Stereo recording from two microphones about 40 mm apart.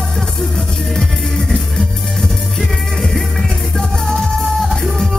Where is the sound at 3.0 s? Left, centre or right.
Centre.